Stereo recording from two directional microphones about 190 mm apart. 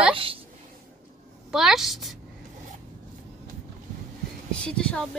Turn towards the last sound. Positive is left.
turn(degrees=5)  # may be behind; listen again after turning